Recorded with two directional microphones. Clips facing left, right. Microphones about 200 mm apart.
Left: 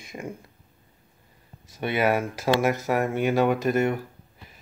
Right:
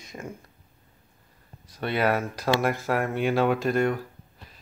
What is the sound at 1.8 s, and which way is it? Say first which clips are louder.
Speech: left 1 dB; 10° left (ahead or behind).